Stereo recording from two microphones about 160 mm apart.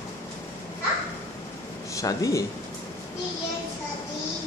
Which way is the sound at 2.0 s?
20° left (ahead or behind).